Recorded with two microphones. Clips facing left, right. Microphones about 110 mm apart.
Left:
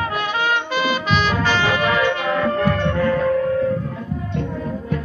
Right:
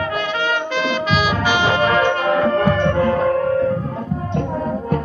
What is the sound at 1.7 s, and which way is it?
Music, 40° right (ahead or behind).